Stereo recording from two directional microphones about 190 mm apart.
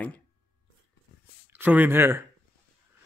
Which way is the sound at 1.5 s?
10° right (ahead or behind).